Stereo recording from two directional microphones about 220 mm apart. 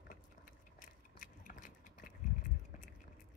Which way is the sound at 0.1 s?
40° left (ahead or behind).